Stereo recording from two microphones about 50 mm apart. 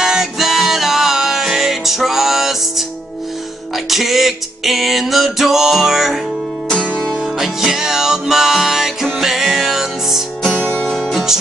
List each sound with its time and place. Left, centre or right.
0.0 s music: centre
3.7 s music: centre
6.7 s music: centre
7.2 s music: centre
10.6 s music: left
11.0 s music: centre